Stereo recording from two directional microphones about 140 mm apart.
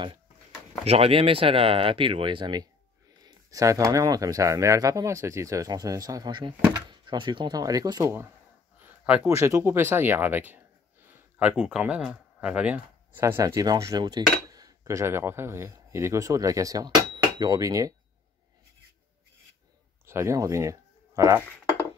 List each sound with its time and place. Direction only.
0.8 s speech: 45° right (ahead or behind); by 8.3 s 20° right (ahead or behind)
8.8 s a sound: 10° right (ahead or behind)
9.3 s speech: 20° right (ahead or behind)
20.1 s speech: 20° right (ahead or behind)